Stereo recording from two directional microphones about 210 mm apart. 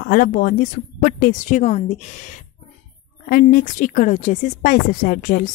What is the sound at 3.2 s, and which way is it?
A woman's voice, 40° left (ahead or behind).